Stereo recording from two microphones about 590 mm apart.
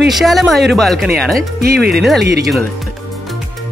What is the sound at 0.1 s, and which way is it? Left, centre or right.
Speech, centre.